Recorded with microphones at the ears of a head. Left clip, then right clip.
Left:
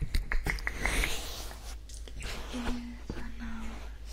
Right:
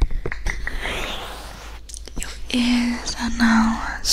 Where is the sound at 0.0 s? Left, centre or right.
Right.